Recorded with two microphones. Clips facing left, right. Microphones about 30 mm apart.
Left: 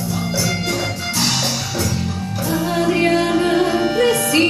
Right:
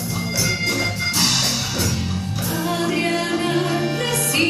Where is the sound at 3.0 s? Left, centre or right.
Centre.